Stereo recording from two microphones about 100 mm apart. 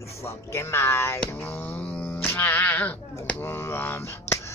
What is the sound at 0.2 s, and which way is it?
Speech, 25° left (ahead or behind).